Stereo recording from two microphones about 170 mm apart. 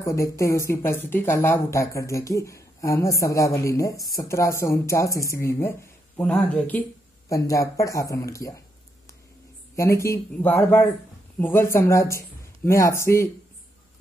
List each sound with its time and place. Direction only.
0.0 s speech: 15° left (ahead or behind)
6.1 s speech: 5° left (ahead or behind)
7.2 s speech: 20° left (ahead or behind)
9.8 s speech: 15° left (ahead or behind)